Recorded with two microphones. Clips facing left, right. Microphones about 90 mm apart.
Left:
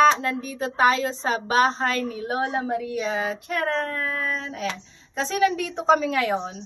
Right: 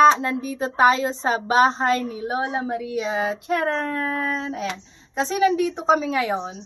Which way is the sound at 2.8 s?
15° right (ahead or behind).